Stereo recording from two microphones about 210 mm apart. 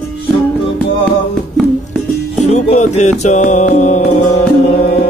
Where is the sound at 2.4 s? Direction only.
35° left (ahead or behind).